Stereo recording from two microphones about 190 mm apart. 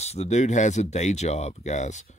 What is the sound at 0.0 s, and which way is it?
Speech, 35° left (ahead or behind).